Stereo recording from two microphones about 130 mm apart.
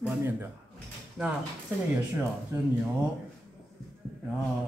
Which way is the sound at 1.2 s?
Centre (ahead or behind).